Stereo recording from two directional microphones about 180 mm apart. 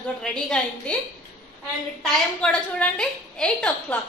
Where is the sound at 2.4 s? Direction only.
5° left (ahead or behind).